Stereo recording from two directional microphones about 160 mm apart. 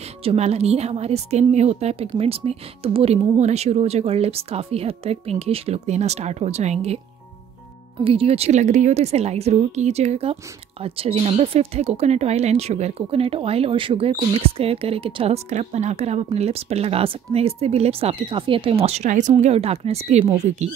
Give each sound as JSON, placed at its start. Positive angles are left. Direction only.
{"t": 0.2, "sound": "speech", "side_deg": -40}
{"t": 8.0, "sound": "speech", "side_deg": -35}